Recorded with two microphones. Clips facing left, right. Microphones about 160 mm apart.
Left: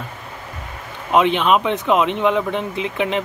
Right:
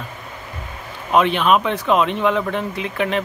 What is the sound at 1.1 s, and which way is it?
Speech, 20° left (ahead or behind).